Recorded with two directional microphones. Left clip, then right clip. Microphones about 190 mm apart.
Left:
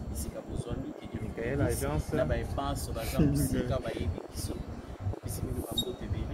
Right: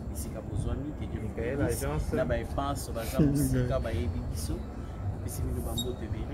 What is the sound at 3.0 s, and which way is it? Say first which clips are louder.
Speech: right 2 dB; 20° right (ahead or behind).